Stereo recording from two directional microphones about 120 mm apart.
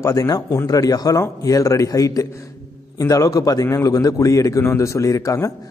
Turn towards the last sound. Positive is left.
turn(degrees=25)  # may be behind; listen again after turning